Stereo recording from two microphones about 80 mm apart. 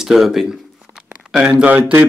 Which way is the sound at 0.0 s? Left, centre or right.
Centre.